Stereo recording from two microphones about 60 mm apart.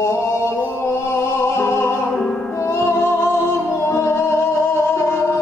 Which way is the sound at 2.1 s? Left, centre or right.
Centre.